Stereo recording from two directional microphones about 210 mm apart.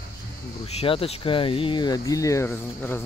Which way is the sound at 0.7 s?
25° left (ahead or behind).